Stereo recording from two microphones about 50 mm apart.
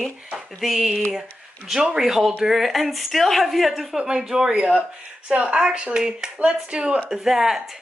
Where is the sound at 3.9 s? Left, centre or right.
Centre.